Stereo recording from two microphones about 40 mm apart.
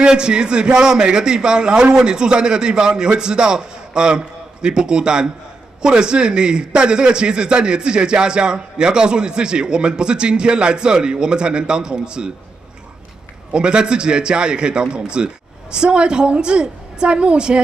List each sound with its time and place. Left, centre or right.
0.0 s a man's voice: right
13.5 s a man's voice: right